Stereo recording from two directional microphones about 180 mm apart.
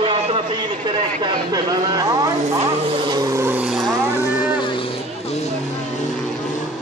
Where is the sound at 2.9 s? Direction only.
25° right (ahead or behind); by 3.9 s 5° right (ahead or behind).